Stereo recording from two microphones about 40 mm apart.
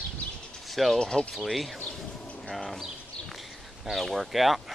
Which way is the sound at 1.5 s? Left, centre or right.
Centre.